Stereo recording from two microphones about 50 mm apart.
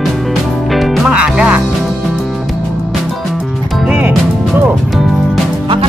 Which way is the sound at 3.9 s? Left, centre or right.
Right.